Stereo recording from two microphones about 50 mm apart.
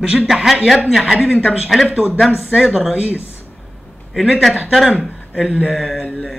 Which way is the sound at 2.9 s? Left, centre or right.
Right.